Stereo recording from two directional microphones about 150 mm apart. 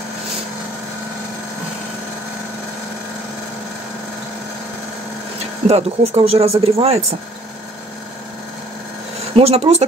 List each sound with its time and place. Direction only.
5.7 s speech: 40° right (ahead or behind)
9.3 s speech: 45° right (ahead or behind)